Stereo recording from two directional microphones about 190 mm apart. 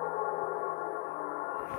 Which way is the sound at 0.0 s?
45° left (ahead or behind).